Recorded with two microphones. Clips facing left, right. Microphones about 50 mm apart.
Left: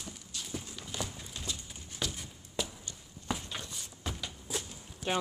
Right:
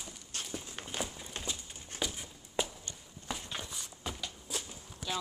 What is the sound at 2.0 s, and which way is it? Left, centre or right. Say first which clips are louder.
Walk: even; centre.